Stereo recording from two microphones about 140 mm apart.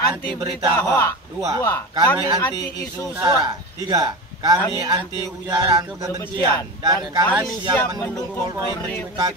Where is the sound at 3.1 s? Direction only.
20° right (ahead or behind).